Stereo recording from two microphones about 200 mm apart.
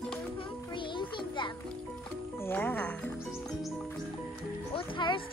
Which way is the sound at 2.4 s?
10° left (ahead or behind).